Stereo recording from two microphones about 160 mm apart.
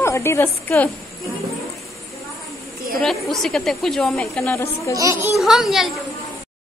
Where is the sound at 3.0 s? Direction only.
Centre (ahead or behind).